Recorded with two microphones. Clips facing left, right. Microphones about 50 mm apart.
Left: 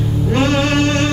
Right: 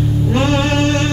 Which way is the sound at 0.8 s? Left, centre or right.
Left.